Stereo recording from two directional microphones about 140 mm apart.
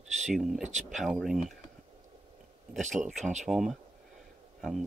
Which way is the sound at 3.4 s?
Centre (ahead or behind).